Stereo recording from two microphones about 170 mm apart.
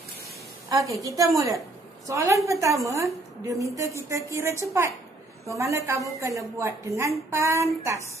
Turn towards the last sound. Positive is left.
turn(degrees=-15)  # may be behind; listen again after turning